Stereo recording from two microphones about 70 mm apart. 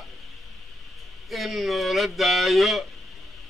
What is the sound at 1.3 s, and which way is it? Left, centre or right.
A man's voice, centre.